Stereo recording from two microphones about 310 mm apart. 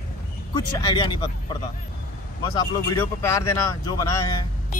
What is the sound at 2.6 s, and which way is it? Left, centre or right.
Speech, centre.